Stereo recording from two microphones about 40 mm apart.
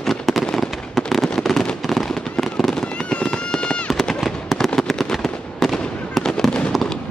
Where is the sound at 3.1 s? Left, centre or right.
Left.